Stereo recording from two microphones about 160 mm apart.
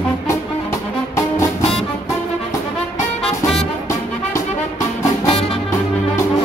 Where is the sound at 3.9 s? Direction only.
20° left (ahead or behind).